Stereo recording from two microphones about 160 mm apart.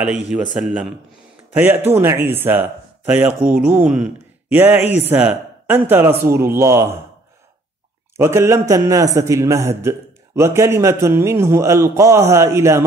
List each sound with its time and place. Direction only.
0.0 s a man's voice: 5° right (ahead or behind)
8.2 s a man's voice: 15° right (ahead or behind)